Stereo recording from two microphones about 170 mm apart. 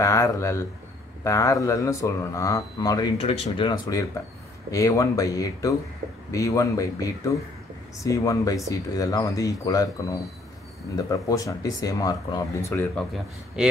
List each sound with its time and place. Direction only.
0.0 s speech: 20° left (ahead or behind)
11.0 s speech: 20° left (ahead or behind)